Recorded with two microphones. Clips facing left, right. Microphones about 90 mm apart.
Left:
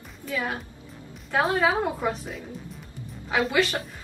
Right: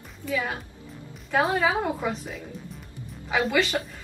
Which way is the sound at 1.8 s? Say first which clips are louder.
Left 1 dB; 5° left (ahead or behind).